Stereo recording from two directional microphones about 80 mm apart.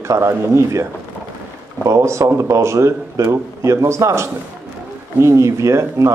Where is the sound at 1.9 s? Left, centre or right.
Right.